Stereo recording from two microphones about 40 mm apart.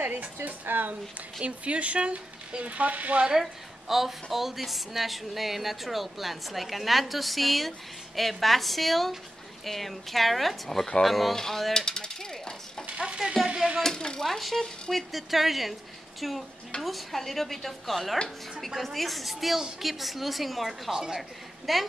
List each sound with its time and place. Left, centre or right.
0.0 s a woman's voice: right
1.4 s speech: right
3.3 s a woman's voice: centre
11.3 s a sound: centre
11.8 s speech: centre
12.9 s a sound: right
13.8 s a sound: centre
14.2 s a woman's voice: centre
20.9 s speech: centre
21.7 s a woman's voice: centre